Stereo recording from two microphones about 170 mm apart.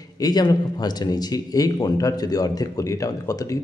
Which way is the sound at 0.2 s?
20° left (ahead or behind).